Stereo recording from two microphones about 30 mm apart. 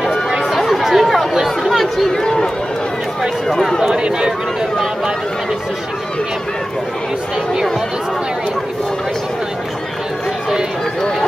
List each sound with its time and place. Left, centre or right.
0.7 s chatter: centre
1.7 s chatter: centre
3.9 s run: right